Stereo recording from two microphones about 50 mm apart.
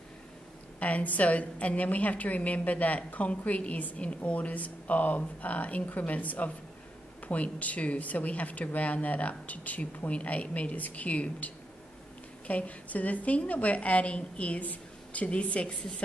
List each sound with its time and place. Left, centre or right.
0.7 s speech: left